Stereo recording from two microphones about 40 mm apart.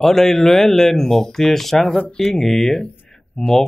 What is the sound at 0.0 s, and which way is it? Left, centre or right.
Speech, centre.